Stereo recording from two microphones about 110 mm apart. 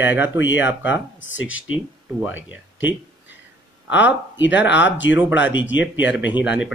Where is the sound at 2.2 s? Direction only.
15° right (ahead or behind).